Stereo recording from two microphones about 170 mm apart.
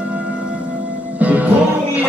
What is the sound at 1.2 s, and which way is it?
Music, 10° right (ahead or behind).